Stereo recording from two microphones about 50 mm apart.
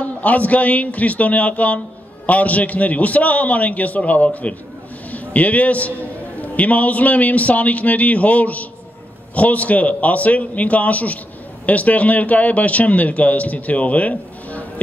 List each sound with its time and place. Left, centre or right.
0.0 s a man's voice: left